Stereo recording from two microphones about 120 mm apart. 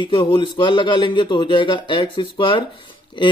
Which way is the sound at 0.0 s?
45° left (ahead or behind).